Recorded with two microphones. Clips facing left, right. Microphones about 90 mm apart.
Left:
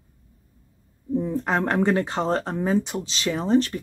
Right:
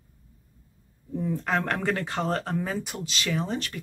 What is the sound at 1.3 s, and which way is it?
Speech, 25° left (ahead or behind).